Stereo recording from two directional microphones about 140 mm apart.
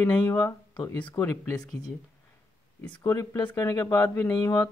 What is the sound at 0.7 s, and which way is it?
Speech, 35° left (ahead or behind).